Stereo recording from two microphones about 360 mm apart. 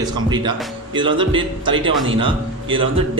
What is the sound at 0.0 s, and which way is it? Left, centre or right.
A man's voice, centre.